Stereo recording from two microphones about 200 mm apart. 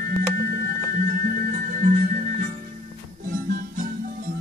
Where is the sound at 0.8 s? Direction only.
45° right (ahead or behind).